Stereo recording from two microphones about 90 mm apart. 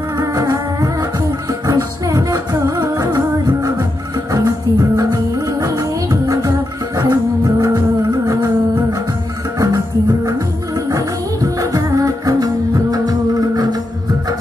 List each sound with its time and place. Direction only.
0.2 s music: 40° right (ahead or behind)
11.4 s music: 40° right (ahead or behind)